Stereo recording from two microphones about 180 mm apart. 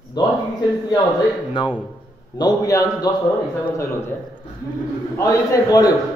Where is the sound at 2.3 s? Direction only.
20° left (ahead or behind).